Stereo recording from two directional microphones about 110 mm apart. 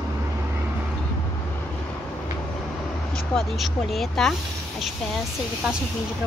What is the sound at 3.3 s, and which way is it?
Speech, centre (ahead or behind).